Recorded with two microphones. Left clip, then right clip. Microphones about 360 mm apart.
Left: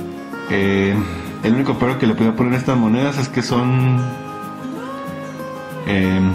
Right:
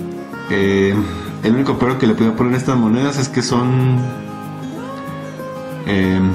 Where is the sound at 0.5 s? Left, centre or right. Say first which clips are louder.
Right 2 dB; centre.